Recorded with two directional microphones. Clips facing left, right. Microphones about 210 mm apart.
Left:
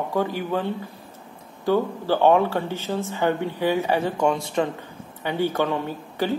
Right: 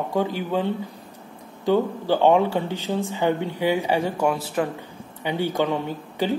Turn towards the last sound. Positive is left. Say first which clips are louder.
# right 1 dB
turn(degrees=-15)  # may be behind; listen again after turning